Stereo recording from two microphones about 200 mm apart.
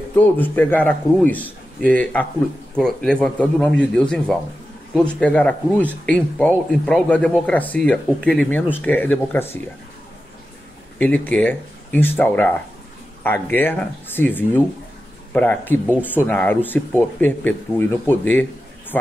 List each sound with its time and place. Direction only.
0.1 s a man's voice: 10° left (ahead or behind)
11.0 s speech: 5° left (ahead or behind)